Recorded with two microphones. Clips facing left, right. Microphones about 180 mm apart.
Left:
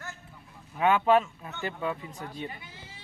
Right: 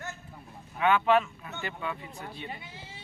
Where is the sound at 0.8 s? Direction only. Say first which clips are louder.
Left 1 dB; 40° left (ahead or behind).